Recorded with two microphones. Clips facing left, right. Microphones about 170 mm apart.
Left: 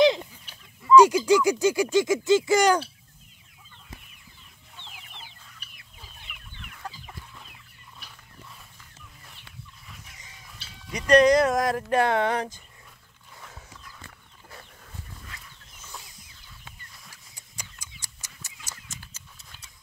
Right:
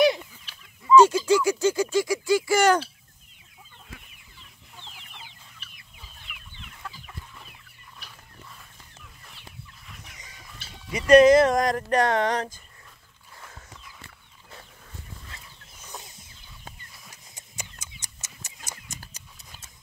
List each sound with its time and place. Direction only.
0.0 s fowl: 20° left (ahead or behind)
0.9 s speech: 15° left (ahead or behind)
5.1 s chicken: 20° right (ahead or behind)
6.3 s chicken: centre (ahead or behind)
6.8 s chicken: 40° left (ahead or behind)
10.9 s speech: 5° right (ahead or behind); by 12.4 s 10° left (ahead or behind)
13.4 s a sound: centre (ahead or behind)
15.9 s a sound: 20° right (ahead or behind)